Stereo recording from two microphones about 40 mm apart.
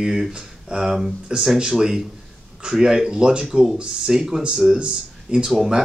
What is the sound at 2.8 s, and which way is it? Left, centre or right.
Speech, centre.